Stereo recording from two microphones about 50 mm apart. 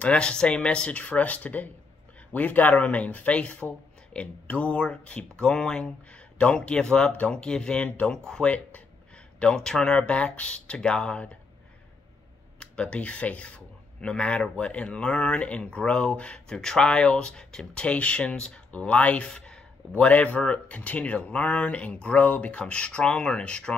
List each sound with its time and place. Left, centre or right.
0.0 s speech: left
9.9 s speech: left
12.5 s speech: left
17.8 s speech: left
20.0 s speech: left